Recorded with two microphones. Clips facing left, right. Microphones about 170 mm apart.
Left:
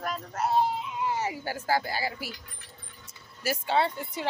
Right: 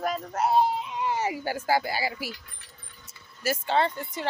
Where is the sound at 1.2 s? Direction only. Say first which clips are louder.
Right 3 dB; 15° right (ahead or behind).